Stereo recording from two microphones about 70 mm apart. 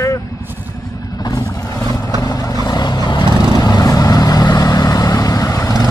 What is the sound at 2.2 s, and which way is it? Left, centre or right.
Vehicle, left.